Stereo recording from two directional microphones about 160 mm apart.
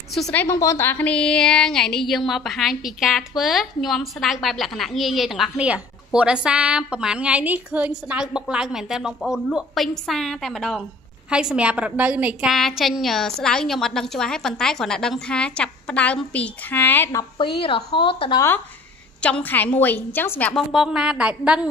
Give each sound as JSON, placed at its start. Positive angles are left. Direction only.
{"t": 0.1, "sound": "a woman's voice", "side_deg": 5}
{"t": 17.4, "sound": "speech", "side_deg": 30}
{"t": 19.2, "sound": "a woman's voice", "side_deg": 10}
{"t": 20.7, "sound": "a woman's voice", "side_deg": -5}